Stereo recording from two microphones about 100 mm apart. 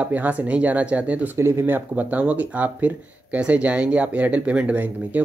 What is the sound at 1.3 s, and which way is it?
Speech, 30° right (ahead or behind).